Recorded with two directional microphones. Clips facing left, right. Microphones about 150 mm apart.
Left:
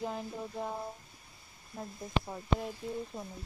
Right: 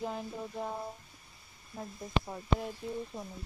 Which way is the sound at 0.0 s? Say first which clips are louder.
Even; centre (ahead or behind).